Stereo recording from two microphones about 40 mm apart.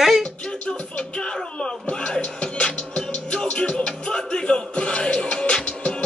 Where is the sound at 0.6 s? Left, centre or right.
Left.